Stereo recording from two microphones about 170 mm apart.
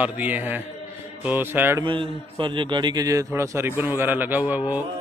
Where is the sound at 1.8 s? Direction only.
30° right (ahead or behind); by 4.8 s 10° right (ahead or behind).